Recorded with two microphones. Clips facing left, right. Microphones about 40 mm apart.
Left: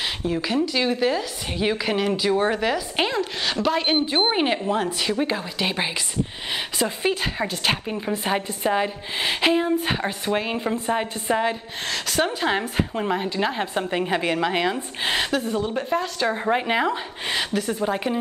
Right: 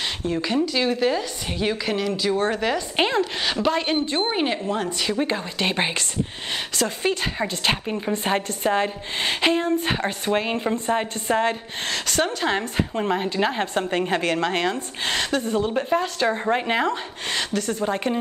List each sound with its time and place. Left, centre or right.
0.2 s a woman's voice: centre
7.0 s a woman's voice: centre
15.6 s a woman's voice: centre